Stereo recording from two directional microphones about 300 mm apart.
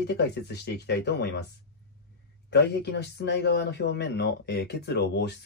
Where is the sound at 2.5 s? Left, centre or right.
Left.